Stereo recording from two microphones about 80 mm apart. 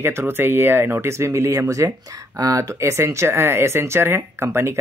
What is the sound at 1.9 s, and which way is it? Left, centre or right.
Speech, right.